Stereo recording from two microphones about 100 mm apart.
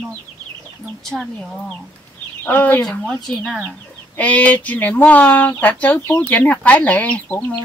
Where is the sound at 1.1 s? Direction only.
Centre (ahead or behind).